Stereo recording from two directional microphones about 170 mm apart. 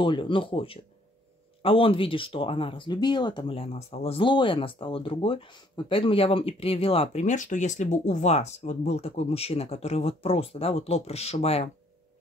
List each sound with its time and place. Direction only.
0.0 s speech: 30° left (ahead or behind)